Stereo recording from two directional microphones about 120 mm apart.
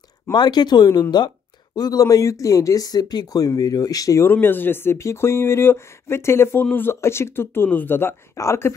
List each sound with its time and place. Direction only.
0.3 s speech: 35° left (ahead or behind)